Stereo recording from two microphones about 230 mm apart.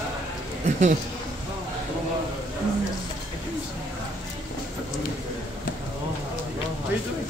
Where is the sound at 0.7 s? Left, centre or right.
Right.